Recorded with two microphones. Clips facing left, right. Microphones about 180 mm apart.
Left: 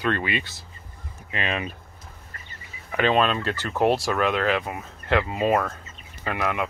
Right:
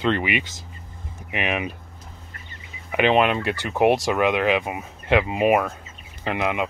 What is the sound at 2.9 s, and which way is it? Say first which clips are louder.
Speech: right 3 dB; 20° right (ahead or behind).